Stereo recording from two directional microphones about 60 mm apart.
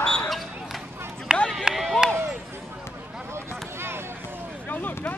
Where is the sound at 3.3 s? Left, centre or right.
Right.